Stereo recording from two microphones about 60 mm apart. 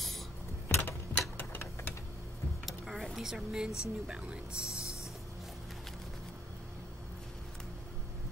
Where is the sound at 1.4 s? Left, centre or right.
Left.